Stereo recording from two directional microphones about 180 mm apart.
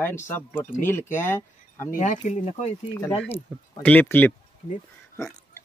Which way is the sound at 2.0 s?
45° left (ahead or behind).